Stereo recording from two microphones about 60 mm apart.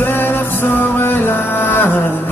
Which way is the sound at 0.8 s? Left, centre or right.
Left.